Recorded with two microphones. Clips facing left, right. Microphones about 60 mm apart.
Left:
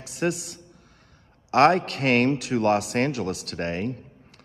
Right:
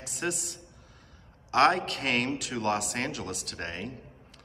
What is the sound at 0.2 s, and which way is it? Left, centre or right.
Speech, left.